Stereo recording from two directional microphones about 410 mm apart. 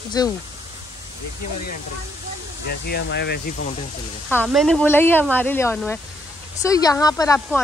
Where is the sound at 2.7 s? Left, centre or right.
Left.